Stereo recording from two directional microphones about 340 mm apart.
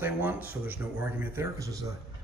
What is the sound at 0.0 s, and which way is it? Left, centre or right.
Speech, centre.